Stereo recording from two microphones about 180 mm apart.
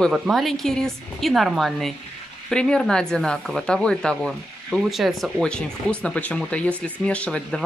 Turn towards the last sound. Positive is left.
turn(degrees=5)  # may be behind; listen again after turning